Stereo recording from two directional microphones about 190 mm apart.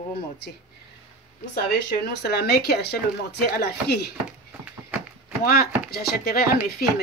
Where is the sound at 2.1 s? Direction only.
60° left (ahead or behind).